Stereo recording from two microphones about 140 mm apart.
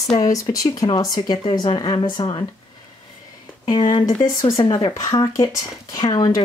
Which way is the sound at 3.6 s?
30° left (ahead or behind).